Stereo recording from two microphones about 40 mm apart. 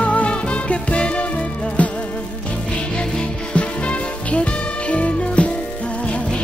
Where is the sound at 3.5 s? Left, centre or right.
Left.